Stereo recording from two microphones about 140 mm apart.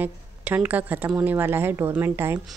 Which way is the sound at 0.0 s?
10° right (ahead or behind).